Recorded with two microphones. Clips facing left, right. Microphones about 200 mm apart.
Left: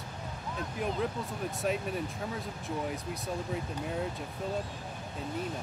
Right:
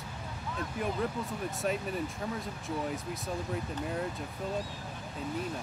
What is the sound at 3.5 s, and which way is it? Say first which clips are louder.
Speech: even; centre (ahead or behind).